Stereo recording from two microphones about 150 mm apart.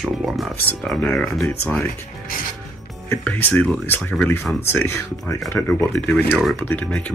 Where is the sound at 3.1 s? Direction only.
15° left (ahead or behind).